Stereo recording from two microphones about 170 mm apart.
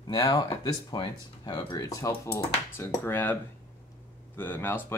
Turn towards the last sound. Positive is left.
turn(degrees=10)  # may be behind; listen again after turning